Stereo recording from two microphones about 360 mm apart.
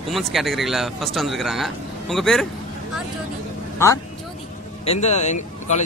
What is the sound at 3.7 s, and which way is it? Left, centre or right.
A man's voice, centre.